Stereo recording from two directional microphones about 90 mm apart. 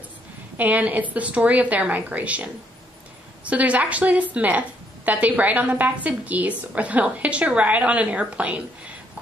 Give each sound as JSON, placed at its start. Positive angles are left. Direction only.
{"t": 0.6, "sound": "a woman's voice", "side_deg": -15}